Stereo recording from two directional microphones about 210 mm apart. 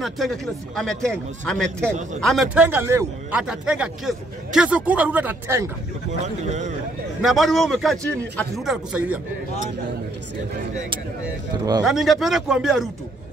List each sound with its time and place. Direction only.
0.0 s speech: centre (ahead or behind)
6.2 s a man's voice: 35° right (ahead or behind)
7.2 s speech: centre (ahead or behind)
11.8 s speech: centre (ahead or behind)